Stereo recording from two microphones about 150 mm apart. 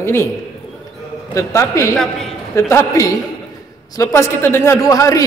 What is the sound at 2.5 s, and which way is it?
A man's voice, 15° left (ahead or behind).